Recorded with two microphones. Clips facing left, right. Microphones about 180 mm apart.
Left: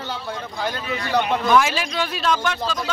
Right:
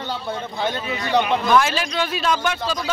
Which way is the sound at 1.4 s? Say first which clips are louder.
Even; 5° left (ahead or behind).